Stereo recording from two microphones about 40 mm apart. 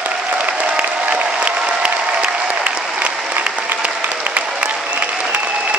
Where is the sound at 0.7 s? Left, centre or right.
Right.